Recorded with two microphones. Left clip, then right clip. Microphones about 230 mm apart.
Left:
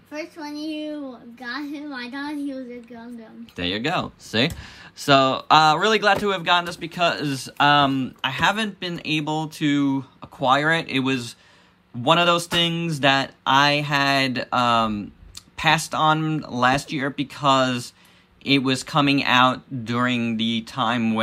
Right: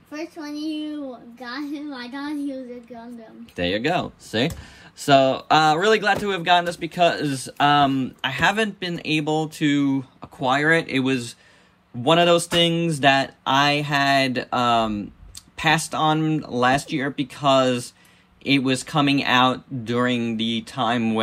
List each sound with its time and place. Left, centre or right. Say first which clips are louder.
0.1 s a child's voice: even; left
3.5 s speech: right 2 dB; centre